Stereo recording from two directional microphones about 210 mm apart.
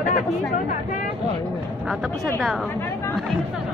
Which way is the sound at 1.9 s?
Centre (ahead or behind).